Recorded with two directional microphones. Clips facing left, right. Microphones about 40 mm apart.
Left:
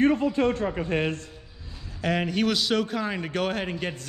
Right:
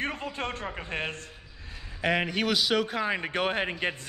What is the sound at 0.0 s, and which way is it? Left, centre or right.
Speech, right.